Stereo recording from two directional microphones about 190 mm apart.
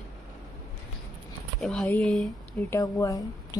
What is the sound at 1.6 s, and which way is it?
Speech, 5° left (ahead or behind).